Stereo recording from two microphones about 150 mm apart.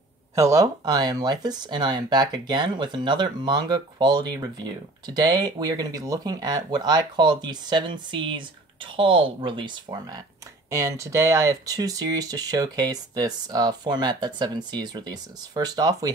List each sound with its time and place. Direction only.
0.4 s speech: 20° right (ahead or behind)